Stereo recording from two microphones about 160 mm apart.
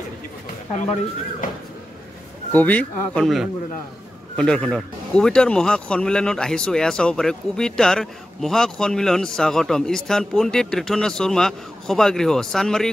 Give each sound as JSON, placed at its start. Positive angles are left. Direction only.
{"t": 2.5, "sound": "a man's voice", "side_deg": 10}